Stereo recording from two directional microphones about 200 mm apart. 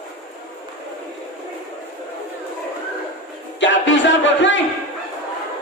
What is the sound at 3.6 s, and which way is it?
Music, 65° left (ahead or behind).